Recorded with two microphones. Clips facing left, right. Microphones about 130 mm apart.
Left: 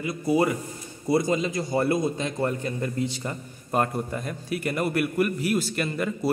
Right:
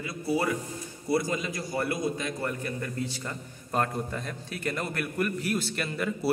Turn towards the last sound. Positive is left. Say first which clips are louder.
# left 2 dB
turn(degrees=0)  # may be behind; listen again after turning